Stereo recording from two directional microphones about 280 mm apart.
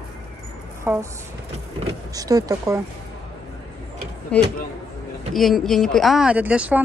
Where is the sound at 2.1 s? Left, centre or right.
Centre.